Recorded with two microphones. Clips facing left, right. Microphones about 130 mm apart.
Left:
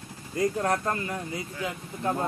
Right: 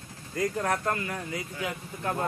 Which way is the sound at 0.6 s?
25° left (ahead or behind).